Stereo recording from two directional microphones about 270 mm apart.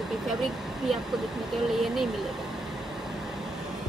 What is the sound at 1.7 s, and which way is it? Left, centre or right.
Speech, centre.